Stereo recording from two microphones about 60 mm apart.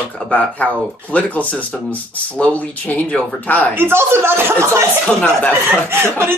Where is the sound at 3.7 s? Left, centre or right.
Right.